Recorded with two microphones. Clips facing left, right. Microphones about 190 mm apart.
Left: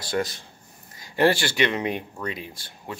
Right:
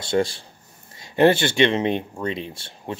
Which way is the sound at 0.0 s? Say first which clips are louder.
Right 5 dB; 25° right (ahead or behind).